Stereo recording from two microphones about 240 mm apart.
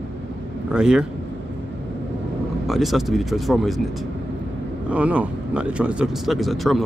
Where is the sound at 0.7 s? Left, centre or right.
Centre.